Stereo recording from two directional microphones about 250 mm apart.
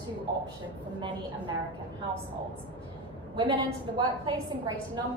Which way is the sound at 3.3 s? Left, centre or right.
Centre.